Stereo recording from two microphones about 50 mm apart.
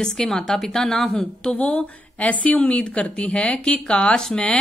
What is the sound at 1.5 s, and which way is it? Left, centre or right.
Speech, left.